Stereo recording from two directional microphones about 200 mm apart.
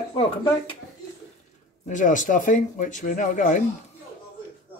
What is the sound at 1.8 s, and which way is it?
Speech, 40° left (ahead or behind).